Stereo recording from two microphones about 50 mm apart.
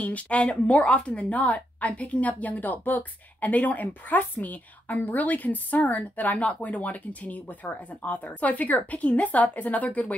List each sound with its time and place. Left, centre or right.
0.0 s a woman's voice: left